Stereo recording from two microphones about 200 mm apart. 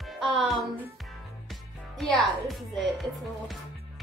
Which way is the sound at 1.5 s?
Centre (ahead or behind).